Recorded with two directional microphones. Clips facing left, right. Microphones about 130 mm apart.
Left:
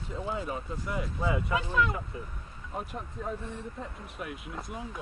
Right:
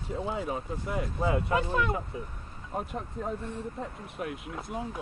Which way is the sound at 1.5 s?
40° right (ahead or behind).